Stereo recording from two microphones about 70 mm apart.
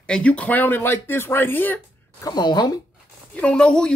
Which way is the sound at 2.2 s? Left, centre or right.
Left.